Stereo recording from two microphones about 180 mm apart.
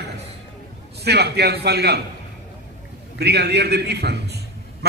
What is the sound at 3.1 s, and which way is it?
A man's voice, 65° right (ahead or behind).